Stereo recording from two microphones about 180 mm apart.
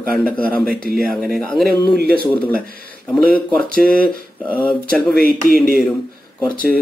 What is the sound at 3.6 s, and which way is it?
Speech, 55° right (ahead or behind).